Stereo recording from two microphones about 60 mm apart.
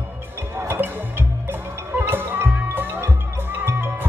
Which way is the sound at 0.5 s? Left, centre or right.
Right.